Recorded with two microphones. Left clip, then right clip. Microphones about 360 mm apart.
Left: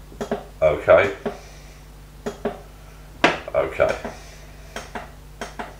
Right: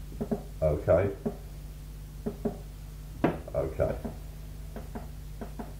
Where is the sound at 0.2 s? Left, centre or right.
Centre.